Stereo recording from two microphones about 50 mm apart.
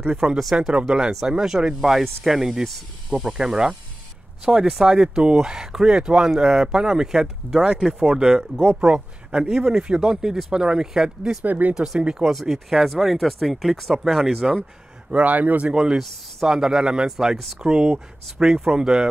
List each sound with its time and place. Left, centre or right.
0.2 s speech: centre
4.6 s speech: centre
8.8 s speech: centre
11.4 s speech: right
11.7 s speech: centre
12.3 s speech: centre
15.0 s speech: right
16.4 s speech: centre